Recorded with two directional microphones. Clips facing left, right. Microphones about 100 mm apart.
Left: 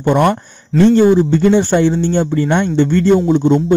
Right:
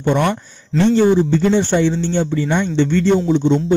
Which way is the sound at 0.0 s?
45° left (ahead or behind).